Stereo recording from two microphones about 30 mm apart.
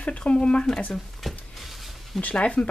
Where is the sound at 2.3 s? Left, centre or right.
Left.